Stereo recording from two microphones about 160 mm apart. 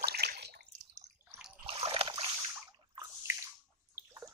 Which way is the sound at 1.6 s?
35° right (ahead or behind).